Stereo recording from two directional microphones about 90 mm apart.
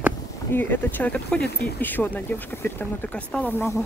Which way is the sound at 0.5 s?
20° left (ahead or behind).